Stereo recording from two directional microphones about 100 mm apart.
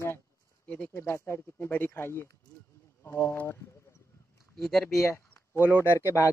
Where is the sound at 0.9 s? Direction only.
25° left (ahead or behind).